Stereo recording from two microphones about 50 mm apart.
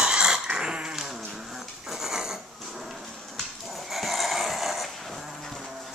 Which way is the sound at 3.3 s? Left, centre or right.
Centre.